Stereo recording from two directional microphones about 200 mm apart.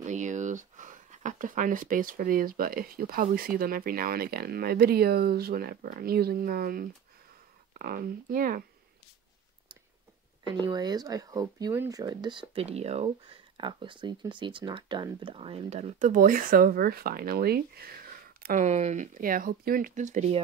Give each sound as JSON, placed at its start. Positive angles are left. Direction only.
{"t": 0.0, "sound": "speech", "side_deg": -40}
{"t": 10.4, "sound": "speech", "side_deg": -20}